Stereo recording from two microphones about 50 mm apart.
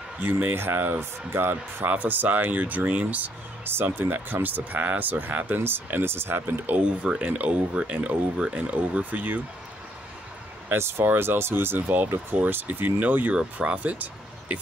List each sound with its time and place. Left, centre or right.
0.2 s speech: right
0.6 s speech: right
1.9 s speech: right
6.0 s speech: right
6.6 s speech: right
7.0 s speech: right
7.2 s speech: right
10.7 s speech: right
12.4 s speech: right
13.3 s speech: right